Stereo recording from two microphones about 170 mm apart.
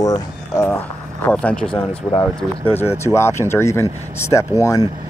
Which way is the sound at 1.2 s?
5° left (ahead or behind).